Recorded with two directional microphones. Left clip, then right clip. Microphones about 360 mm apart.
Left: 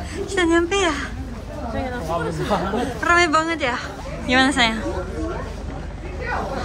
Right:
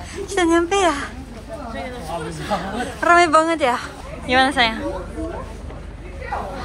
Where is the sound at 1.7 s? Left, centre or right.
Left.